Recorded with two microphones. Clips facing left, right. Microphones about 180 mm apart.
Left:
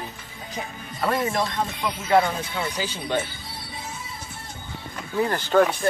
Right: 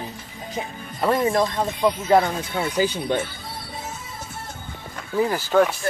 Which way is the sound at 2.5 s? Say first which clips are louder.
Right 6 dB; 50° right (ahead or behind).